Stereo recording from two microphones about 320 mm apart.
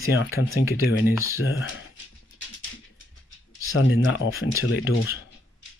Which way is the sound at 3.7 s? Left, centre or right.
Left.